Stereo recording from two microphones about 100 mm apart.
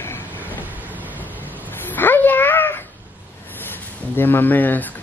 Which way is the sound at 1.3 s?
15° right (ahead or behind).